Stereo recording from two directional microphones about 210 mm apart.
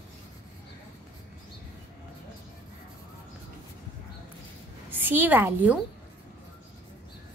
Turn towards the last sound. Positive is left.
turn(degrees=-10)  # may be behind; listen again after turning